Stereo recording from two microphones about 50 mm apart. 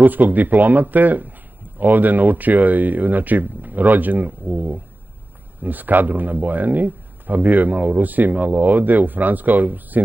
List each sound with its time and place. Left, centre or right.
0.0 s speech: right